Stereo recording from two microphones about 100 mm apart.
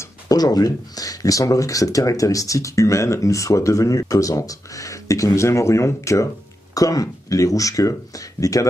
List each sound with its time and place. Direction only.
0.0 s speech: 40° left (ahead or behind)